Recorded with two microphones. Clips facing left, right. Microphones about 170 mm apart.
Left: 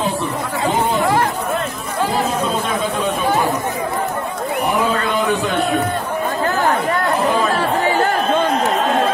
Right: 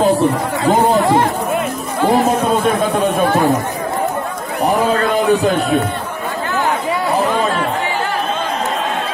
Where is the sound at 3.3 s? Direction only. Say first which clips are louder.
Right 3 dB; 10° left (ahead or behind).